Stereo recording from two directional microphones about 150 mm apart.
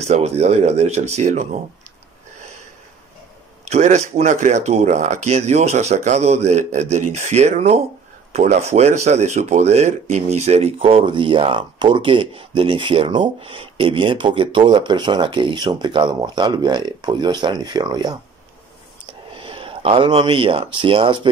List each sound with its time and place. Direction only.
0.0 s speech: 45° right (ahead or behind)
3.6 s speech: 50° right (ahead or behind); by 18.2 s 30° right (ahead or behind)
19.3 s speech: 35° right (ahead or behind)